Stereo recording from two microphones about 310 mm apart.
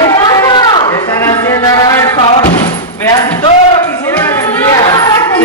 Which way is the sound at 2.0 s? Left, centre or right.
Centre.